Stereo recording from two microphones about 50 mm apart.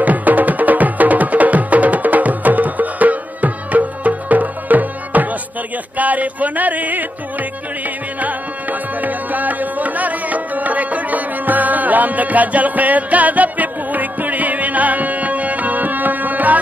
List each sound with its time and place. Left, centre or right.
0.0 s music: right
5.9 s a sound: right
8.2 s music: right